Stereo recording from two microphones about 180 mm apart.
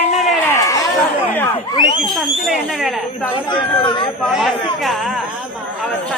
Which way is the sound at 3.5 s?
30° left (ahead or behind).